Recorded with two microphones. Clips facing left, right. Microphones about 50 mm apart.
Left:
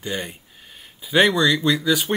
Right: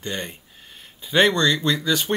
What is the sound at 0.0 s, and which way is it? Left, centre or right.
Speech, centre.